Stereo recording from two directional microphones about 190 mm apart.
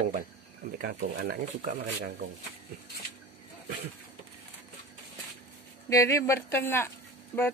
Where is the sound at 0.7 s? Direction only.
55° right (ahead or behind).